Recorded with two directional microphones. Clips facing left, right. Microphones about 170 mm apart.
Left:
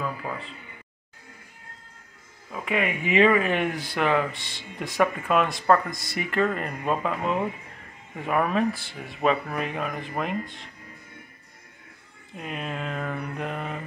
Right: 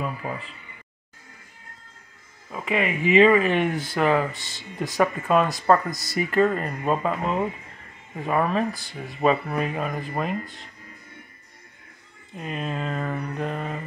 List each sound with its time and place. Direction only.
0.2 s speech: 10° right (ahead or behind)
2.5 s speech: centre (ahead or behind)
12.4 s speech: centre (ahead or behind)